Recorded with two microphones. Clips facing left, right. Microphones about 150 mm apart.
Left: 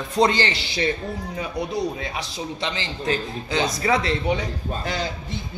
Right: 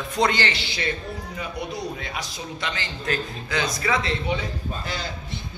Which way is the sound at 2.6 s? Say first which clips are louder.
Left 3 dB; 30° left (ahead or behind).